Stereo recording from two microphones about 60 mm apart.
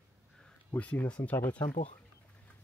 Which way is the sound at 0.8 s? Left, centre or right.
Left.